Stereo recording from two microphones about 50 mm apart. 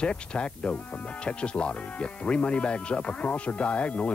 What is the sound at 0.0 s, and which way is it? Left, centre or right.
Speech, left.